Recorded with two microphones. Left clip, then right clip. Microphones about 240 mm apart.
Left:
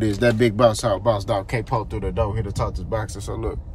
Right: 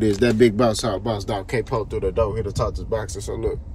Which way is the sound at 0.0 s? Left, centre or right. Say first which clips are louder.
Right 2 dB; centre.